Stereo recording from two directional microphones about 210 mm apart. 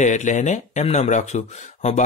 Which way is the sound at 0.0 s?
35° left (ahead or behind).